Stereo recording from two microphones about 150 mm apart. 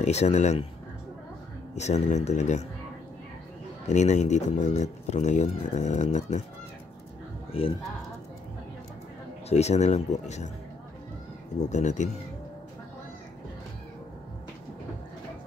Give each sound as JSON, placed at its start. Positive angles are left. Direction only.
{"t": 0.0, "sound": "speech", "side_deg": 50}
{"t": 1.8, "sound": "speech", "side_deg": 50}
{"t": 3.8, "sound": "speech", "side_deg": 50}
{"t": 7.5, "sound": "speech", "side_deg": 40}
{"t": 9.5, "sound": "speech", "side_deg": 45}
{"t": 11.7, "sound": "speech", "side_deg": 50}